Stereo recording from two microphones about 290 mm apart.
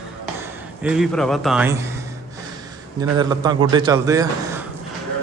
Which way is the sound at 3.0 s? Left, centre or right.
Centre.